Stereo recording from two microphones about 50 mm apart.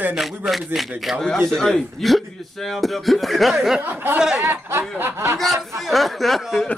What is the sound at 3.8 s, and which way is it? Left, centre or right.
Speech, right.